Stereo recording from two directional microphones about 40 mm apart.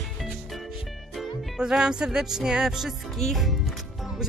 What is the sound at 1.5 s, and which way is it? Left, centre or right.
Music, centre.